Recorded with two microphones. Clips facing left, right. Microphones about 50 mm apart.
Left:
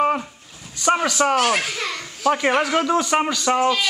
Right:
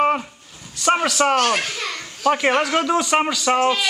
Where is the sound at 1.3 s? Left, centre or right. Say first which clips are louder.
Even; centre.